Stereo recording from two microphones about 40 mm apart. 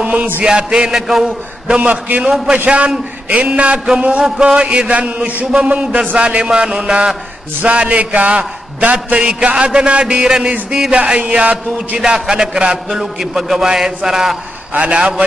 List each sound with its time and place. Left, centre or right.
0.0 s chant: right
0.4 s a man's voice: right
0.8 s a man's voice: centre
1.2 s a man's voice: right
2.2 s a man's voice: centre
2.5 s a man's voice: right
4.9 s a man's voice: right
8.9 s a man's voice: right
12.0 s a man's voice: centre
14.7 s a man's voice: right